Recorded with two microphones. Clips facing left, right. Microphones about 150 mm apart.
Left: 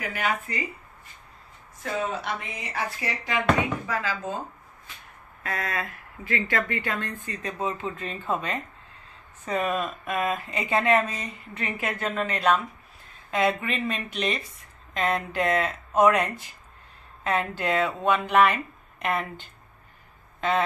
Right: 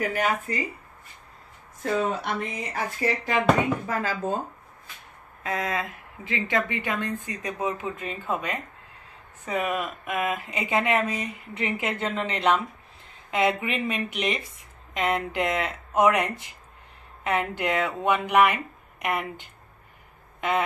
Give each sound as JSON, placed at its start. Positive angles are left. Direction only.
{"t": 0.0, "sound": "speech", "side_deg": -40}
{"t": 1.8, "sound": "speech", "side_deg": -45}
{"t": 5.4, "sound": "speech", "side_deg": -20}
{"t": 20.3, "sound": "a sound", "side_deg": -15}